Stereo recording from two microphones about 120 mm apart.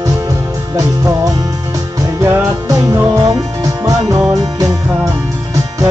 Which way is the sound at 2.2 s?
25° right (ahead or behind).